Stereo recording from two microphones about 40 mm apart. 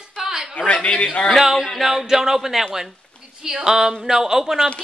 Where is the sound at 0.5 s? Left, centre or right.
Left.